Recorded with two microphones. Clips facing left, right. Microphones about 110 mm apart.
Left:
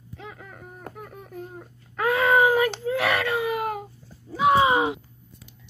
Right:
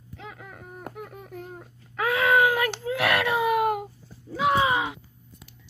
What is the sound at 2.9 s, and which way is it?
Baby cry, 10° right (ahead or behind).